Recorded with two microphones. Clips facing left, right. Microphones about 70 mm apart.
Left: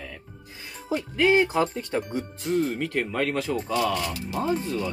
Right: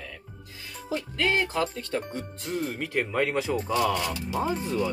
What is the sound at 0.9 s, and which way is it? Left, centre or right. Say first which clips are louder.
Speech: left 6 dB; centre.